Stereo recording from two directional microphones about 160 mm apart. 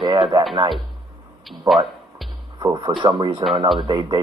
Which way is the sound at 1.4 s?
Centre (ahead or behind).